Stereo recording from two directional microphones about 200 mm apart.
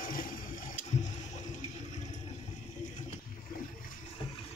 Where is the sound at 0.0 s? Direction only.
45° left (ahead or behind).